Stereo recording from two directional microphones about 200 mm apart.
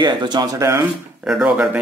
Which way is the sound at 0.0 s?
20° right (ahead or behind).